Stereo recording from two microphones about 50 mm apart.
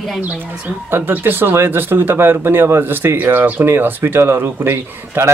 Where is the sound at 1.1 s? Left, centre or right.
Right.